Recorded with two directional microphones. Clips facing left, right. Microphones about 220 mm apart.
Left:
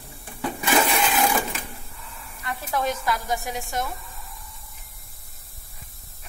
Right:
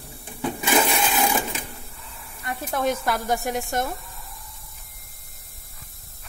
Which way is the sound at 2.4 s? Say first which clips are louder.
Right 2 dB; 55° right (ahead or behind).